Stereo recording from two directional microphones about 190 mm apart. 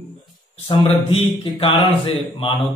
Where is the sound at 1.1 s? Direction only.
30° left (ahead or behind).